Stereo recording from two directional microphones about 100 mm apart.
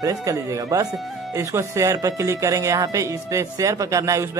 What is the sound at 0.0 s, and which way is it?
Speech, 35° right (ahead or behind).